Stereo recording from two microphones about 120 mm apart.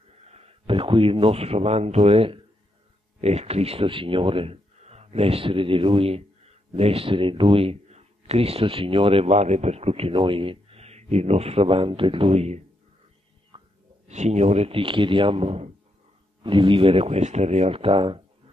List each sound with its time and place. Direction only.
0.3 s speech: 55° right (ahead or behind)
13.5 s a sound: 45° right (ahead or behind)
14.0 s speech: 70° right (ahead or behind)
16.4 s speech: 45° right (ahead or behind)